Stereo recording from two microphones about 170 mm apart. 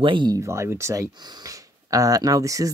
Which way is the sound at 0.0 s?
30° right (ahead or behind).